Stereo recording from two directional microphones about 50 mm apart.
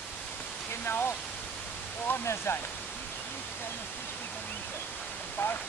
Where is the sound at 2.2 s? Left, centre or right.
Left.